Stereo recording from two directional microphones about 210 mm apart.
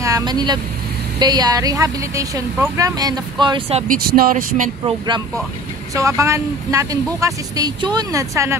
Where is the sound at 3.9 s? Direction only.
45° right (ahead or behind).